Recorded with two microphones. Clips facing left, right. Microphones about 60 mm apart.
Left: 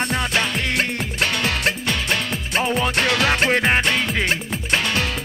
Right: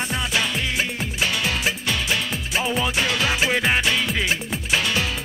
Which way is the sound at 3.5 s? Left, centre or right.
Left.